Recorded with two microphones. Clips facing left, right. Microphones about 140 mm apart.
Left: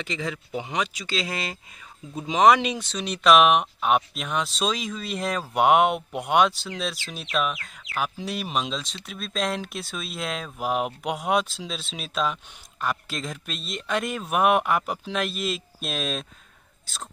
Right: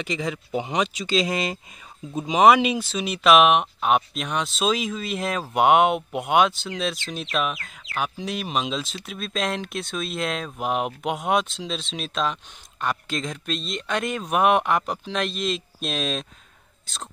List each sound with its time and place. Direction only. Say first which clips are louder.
0.0 s speech: right 3 dB; 15° right (ahead or behind); by 17.1 s 5° left (ahead or behind)